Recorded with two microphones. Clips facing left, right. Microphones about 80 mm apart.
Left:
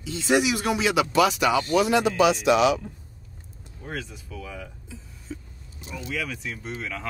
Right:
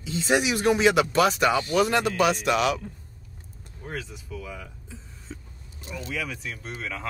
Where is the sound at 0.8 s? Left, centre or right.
Right.